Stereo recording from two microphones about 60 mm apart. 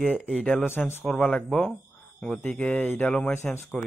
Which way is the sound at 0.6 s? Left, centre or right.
Left.